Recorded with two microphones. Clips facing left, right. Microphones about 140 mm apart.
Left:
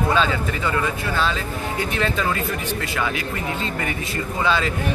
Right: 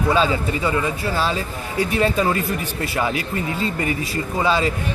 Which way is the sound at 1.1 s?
35° right (ahead or behind).